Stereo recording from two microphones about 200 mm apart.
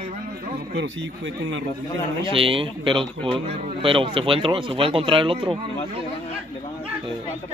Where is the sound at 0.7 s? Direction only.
60° right (ahead or behind).